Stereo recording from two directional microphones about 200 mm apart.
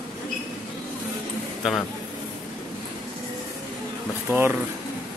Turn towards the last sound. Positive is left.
turn(degrees=-10)  # may be behind; listen again after turning